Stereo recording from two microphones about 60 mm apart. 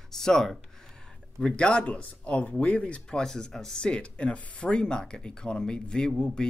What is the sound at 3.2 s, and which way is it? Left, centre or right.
Speech, centre.